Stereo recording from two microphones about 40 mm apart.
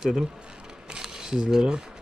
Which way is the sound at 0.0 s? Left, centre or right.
Centre.